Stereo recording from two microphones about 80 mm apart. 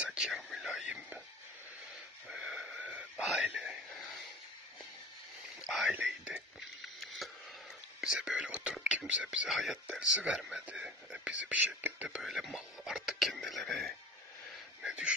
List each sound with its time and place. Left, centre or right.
0.0 s whispering: centre
0.3 s whispering: centre
0.7 s a sound: centre
2.2 s wheeze: centre
2.8 s a sound: centre
5.6 s whispering: centre
5.9 s whispering: centre
7.0 s a sound: centre
8.0 s speech: centre
9.5 s speech: centre
9.8 s speech: centre
12.2 s speech: centre
14.8 s a sound: centre